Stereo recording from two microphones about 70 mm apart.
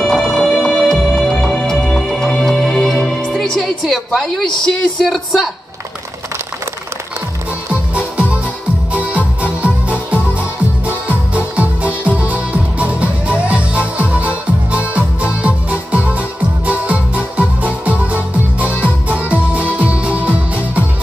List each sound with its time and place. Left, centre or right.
0.0 s music: centre
3.3 s a woman's voice: centre
7.9 s music: centre